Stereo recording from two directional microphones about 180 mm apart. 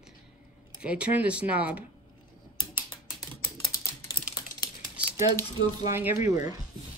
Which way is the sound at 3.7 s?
50° left (ahead or behind).